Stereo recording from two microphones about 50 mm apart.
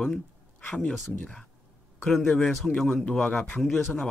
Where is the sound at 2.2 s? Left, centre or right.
Centre.